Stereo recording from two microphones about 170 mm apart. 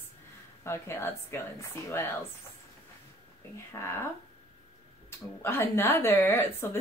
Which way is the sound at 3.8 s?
15° left (ahead or behind).